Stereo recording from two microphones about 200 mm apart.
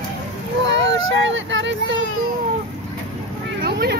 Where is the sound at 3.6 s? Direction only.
50° right (ahead or behind).